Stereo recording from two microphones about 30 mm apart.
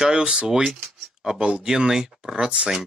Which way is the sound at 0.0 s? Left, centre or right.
Right.